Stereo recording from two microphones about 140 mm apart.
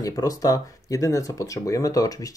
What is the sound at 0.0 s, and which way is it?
Speech, 25° left (ahead or behind).